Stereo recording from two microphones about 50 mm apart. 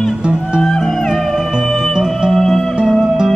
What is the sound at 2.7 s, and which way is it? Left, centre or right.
Music, centre.